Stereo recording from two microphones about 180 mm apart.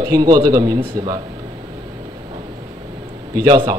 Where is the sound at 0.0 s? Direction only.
20° right (ahead or behind).